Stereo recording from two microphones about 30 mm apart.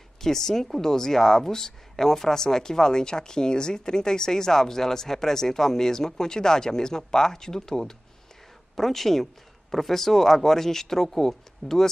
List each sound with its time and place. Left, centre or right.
0.2 s speech: centre
8.7 s speech: centre